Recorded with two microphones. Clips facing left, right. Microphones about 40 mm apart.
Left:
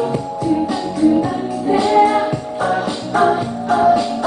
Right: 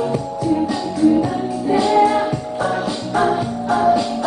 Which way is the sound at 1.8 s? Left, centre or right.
Centre.